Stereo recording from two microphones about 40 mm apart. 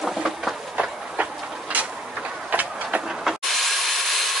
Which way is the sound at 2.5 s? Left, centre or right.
Right.